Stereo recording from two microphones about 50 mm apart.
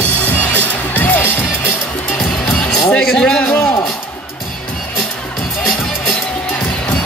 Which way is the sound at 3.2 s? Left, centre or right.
Centre.